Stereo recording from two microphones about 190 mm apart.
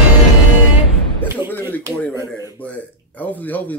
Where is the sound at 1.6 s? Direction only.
15° right (ahead or behind).